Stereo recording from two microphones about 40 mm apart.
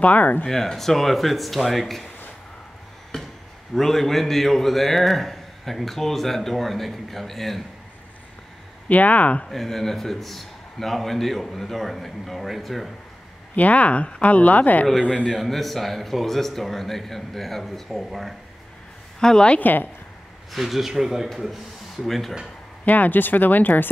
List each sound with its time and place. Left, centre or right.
0.0 s speech: left
0.5 s a man's voice: centre
3.1 s chop: centre
3.7 s a man's voice: centre
8.8 s speech: left
9.5 s a man's voice: centre
13.6 s speech: left
15.3 s a man's voice: centre
19.1 s a woman's voice: centre
19.6 s speech: left
20.5 s speech: centre
21.3 s speech: centre
22.8 s speech: left